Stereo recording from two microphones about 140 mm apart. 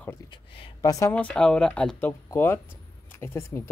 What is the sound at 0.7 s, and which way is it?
Speech, 25° left (ahead or behind).